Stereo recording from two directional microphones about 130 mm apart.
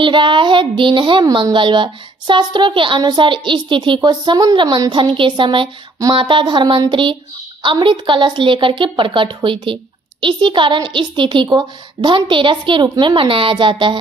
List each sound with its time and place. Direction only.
0.0 s speech: 40° right (ahead or behind)